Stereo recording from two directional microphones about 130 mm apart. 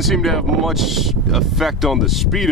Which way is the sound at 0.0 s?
Centre (ahead or behind).